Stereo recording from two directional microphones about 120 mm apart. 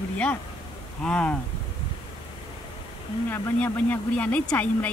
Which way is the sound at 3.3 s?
15° left (ahead or behind).